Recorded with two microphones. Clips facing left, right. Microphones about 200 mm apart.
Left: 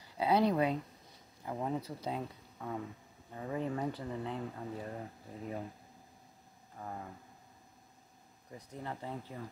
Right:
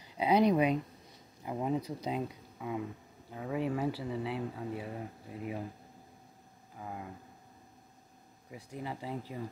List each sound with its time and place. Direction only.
0.0 s speech: 15° right (ahead or behind)
6.8 s speech: 5° right (ahead or behind)
8.5 s speech: 10° right (ahead or behind)